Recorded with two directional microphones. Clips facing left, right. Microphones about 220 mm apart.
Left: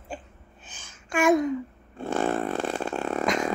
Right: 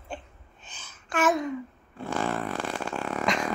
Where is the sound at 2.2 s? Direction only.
30° left (ahead or behind).